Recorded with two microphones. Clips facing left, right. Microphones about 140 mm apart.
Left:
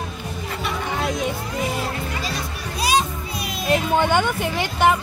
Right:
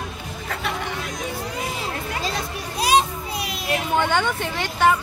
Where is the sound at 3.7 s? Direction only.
15° left (ahead or behind).